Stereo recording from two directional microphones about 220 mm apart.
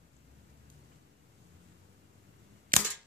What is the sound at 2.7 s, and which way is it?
Cap gun, 40° right (ahead or behind).